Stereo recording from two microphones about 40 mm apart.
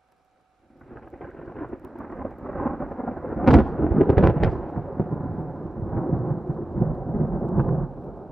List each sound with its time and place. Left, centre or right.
1.2 s thunder: centre